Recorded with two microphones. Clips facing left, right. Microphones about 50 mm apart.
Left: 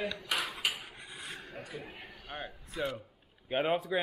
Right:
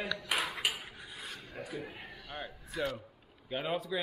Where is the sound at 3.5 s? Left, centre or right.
Left.